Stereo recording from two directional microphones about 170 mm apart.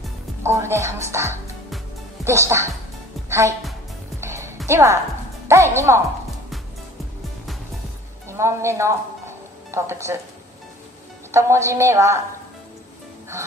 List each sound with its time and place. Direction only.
0.4 s a woman's voice: 15° right (ahead or behind)
4.2 s music: 15° right (ahead or behind)
4.6 s a woman's voice: 15° right (ahead or behind)
8.3 s a woman's voice: 15° right (ahead or behind)
11.3 s a woman's voice: 15° right (ahead or behind)